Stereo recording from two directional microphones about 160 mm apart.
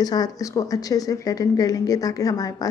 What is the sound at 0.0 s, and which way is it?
A woman's voice, 25° left (ahead or behind).